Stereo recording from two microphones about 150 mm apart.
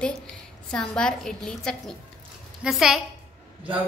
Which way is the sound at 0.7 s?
5° left (ahead or behind).